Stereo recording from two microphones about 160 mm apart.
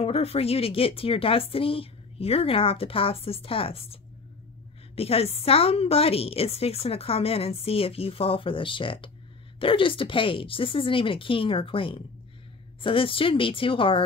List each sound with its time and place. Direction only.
0.0 s a woman's voice: 40° left (ahead or behind)